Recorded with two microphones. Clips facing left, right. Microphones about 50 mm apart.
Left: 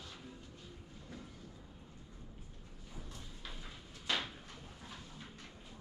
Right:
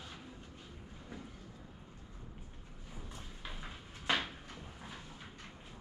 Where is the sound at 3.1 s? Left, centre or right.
Right.